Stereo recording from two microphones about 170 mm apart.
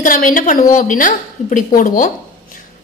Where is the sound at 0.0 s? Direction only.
50° left (ahead or behind).